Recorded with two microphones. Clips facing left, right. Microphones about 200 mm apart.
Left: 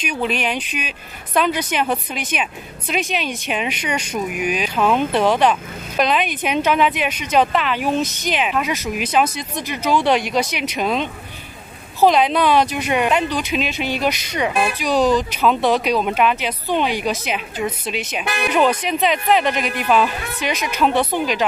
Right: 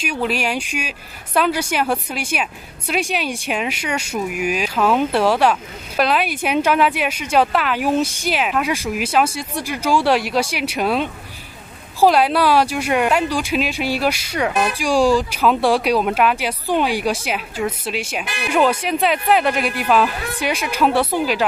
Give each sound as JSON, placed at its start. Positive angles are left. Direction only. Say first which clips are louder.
{"t": 0.1, "sound": "speech", "louder": "even", "side_deg": -5}
{"t": 18.2, "sound": "speech", "louder": "left 5 dB", "side_deg": 55}
{"t": 18.5, "sound": "speech", "louder": "right 1 dB", "side_deg": -10}